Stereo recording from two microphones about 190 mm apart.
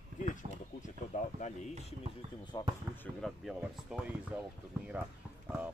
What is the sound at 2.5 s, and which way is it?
Speech, 20° left (ahead or behind).